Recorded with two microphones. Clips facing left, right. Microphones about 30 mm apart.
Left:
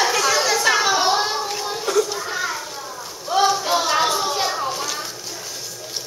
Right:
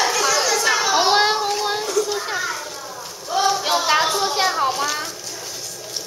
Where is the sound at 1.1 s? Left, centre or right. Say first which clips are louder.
Right 4 dB; right.